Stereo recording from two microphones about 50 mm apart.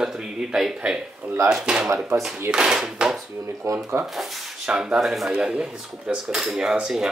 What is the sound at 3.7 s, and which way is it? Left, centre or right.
Speech, right.